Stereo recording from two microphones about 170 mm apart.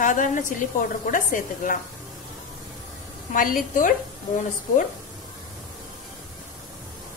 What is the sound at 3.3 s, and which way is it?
Speech, 55° left (ahead or behind).